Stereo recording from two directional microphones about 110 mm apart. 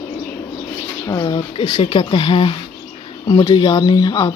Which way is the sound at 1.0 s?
40° left (ahead or behind).